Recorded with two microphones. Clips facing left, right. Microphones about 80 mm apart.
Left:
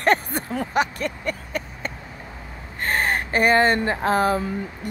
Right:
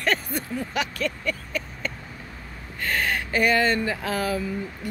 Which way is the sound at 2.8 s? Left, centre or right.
Left.